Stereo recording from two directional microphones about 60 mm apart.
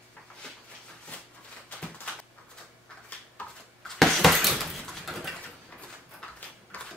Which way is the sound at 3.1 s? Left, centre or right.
Left.